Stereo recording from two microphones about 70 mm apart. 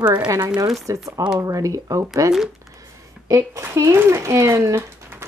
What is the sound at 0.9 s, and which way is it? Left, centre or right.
Speech, right.